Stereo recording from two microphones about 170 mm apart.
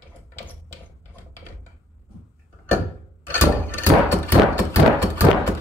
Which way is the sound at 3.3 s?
10° left (ahead or behind).